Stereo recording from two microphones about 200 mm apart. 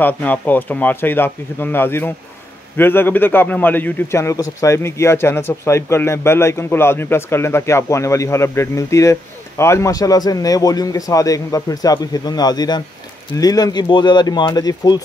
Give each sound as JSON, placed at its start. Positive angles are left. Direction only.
{"t": 0.0, "sound": "a man's voice", "side_deg": 10}